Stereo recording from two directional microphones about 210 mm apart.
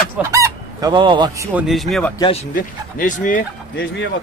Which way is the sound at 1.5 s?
Centre (ahead or behind).